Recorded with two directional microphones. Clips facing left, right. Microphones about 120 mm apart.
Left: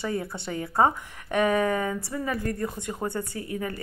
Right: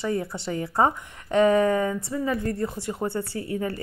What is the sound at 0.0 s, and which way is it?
Speech, 25° right (ahead or behind).